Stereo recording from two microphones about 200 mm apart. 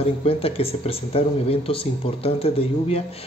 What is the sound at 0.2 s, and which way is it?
Speech, 30° left (ahead or behind).